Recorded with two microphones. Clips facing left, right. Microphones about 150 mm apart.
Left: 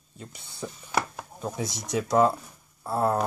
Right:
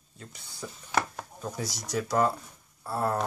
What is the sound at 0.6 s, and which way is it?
Speech, 15° left (ahead or behind).